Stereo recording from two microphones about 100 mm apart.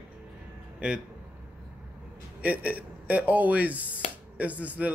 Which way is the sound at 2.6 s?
15° right (ahead or behind).